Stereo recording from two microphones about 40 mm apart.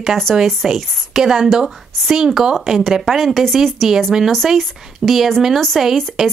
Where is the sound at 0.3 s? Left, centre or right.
Centre.